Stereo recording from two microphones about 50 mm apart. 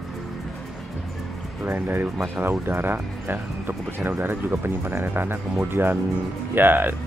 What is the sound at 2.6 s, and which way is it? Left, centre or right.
Speech, right.